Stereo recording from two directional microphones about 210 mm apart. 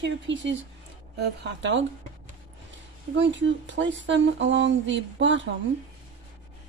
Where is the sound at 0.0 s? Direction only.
60° right (ahead or behind).